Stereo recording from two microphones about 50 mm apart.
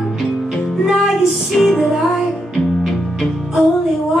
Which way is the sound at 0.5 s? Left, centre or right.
Centre.